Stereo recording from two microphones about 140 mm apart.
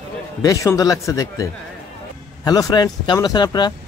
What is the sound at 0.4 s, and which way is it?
Speech, 25° left (ahead or behind).